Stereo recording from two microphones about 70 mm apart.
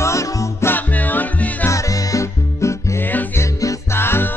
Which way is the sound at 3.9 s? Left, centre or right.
Left.